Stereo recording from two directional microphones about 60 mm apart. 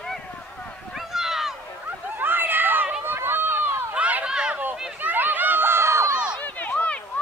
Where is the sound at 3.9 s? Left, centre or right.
Right.